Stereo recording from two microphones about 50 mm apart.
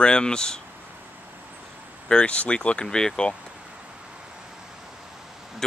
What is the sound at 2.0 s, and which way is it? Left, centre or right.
Speech, centre.